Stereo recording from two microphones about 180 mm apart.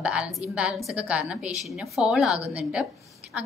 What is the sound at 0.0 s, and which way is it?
A woman's voice, 5° right (ahead or behind).